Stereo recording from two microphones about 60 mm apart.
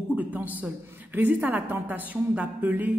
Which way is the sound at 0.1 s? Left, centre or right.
Right.